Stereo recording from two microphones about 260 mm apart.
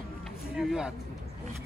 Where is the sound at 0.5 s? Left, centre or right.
Centre.